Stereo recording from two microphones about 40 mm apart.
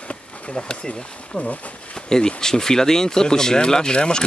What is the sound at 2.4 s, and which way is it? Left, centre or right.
Speech, centre.